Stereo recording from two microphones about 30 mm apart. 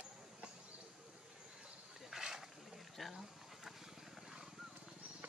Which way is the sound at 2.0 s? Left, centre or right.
Centre.